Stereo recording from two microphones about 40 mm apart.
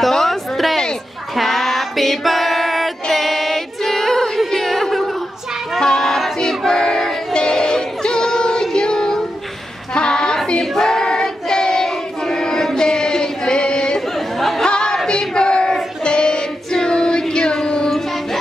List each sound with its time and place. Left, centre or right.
0.1 s a sound: centre
1.3 s female singing: centre
4.5 s a sound: centre
5.8 s music: centre
6.4 s a sound: centre
9.9 s female singing: left
10.6 s choir: centre
12.7 s a sound: centre
14.1 s chatter: centre
14.6 s music: centre
15.0 s choir: left
17.8 s music: centre